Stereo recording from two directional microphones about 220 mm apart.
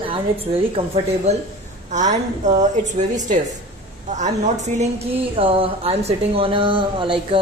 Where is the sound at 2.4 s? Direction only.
35° right (ahead or behind).